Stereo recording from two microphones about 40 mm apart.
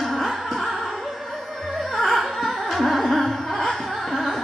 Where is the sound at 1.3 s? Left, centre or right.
Centre.